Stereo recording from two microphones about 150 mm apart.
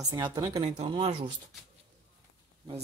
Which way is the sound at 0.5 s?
45° right (ahead or behind).